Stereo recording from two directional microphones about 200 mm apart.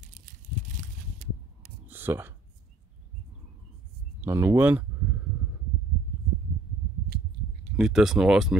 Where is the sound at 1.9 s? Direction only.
10° right (ahead or behind).